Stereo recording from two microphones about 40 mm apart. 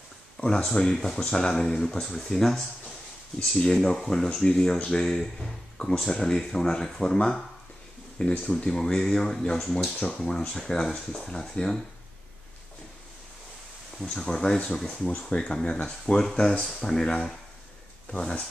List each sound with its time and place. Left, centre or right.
0.4 s a sound: left
0.7 s speech: centre
14.0 s speech: centre
15.0 s speech: left
15.3 s speech: left